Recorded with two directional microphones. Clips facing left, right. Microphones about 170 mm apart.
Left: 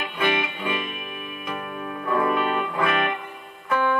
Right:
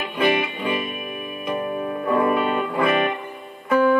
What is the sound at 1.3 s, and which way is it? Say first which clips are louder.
Music: right 8 dB; 35° right (ahead or behind).